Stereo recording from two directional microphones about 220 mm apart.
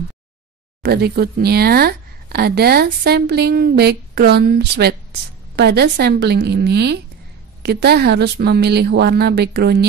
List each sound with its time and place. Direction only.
0.8 s speech: 45° right (ahead or behind)